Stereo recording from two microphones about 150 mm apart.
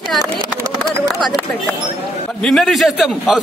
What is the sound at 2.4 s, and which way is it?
A woman's voice, 5° left (ahead or behind).